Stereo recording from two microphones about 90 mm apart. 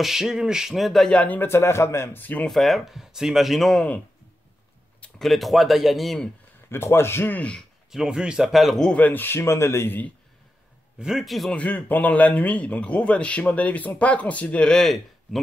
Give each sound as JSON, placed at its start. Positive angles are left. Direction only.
{"t": 0.0, "sound": "speech", "side_deg": -5}
{"t": 1.1, "sound": "speech", "side_deg": 15}
{"t": 2.4, "sound": "speech", "side_deg": 0}
{"t": 5.2, "sound": "speech", "side_deg": 0}
{"t": 6.7, "sound": "speech", "side_deg": 30}
{"t": 7.9, "sound": "speech", "side_deg": -5}
{"t": 9.0, "sound": "speech", "side_deg": 20}
{"t": 11.0, "sound": "speech", "side_deg": -5}
{"t": 11.5, "sound": "a man's voice", "side_deg": 20}